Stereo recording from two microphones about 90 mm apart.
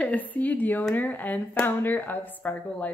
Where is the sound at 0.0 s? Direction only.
15° left (ahead or behind).